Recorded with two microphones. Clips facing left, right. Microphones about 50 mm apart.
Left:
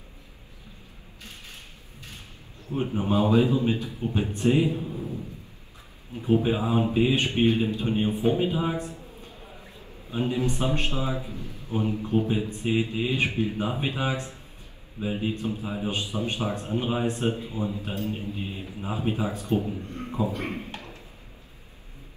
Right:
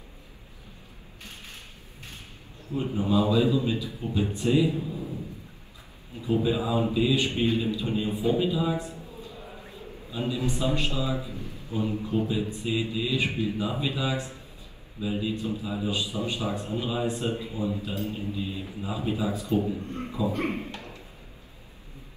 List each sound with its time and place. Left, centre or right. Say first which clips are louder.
2.7 s a man's voice: even; left
6.1 s a man's voice: left 2 dB; left
11.6 s a sound: left 2 dB; left
12.0 s a man's voice: left 2 dB; left
19.6 s a man's voice: right 2 dB; right
20.1 s a man's voice: left 1 dB; left
20.3 s a man's voice: right 3 dB; right
20.7 s a sound: even; left